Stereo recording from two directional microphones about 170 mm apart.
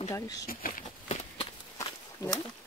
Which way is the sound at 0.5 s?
55° left (ahead or behind).